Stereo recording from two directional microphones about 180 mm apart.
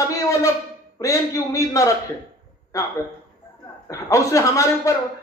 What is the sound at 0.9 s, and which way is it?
Speech, 15° left (ahead or behind).